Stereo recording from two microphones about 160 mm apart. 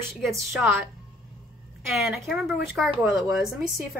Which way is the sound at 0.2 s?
Centre (ahead or behind).